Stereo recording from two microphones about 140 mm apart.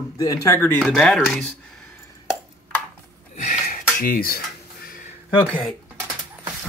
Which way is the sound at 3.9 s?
90° left.